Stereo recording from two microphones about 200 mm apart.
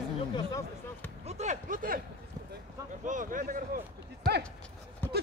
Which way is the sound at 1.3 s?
35° right (ahead or behind).